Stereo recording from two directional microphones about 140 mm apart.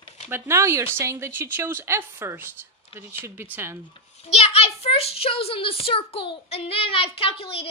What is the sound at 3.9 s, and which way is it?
A child's voice, 45° left (ahead or behind).